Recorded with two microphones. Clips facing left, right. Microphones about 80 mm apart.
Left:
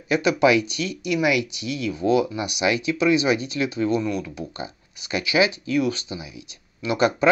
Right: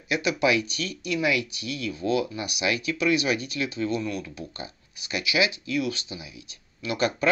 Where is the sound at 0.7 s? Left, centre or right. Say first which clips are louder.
Left 5 dB; right.